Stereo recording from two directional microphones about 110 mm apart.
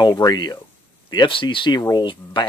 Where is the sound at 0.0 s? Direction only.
40° left (ahead or behind).